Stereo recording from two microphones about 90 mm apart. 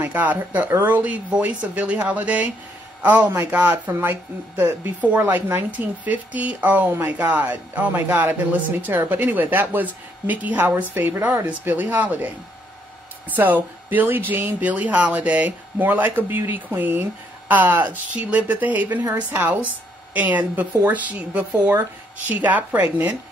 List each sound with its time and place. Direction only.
0.0 s a man's voice: 20° right (ahead or behind)